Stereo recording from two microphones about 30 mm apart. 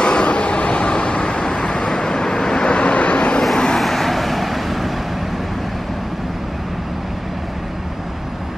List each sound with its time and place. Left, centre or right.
0.0 s vehicle: left
1.4 s vehicle: left
3.5 s vehicle: left
3.8 s vehicle: centre